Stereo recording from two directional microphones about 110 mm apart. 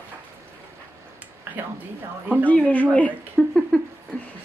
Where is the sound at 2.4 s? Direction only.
15° left (ahead or behind).